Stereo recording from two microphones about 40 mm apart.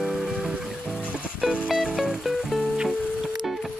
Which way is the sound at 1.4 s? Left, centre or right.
Centre.